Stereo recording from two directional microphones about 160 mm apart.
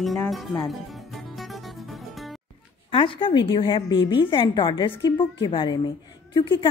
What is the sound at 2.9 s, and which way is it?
A woman's voice, 35° left (ahead or behind).